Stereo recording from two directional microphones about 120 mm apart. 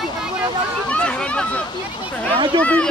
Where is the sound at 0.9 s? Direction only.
10° left (ahead or behind).